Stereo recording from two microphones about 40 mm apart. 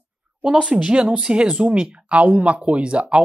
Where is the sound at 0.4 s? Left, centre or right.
Right.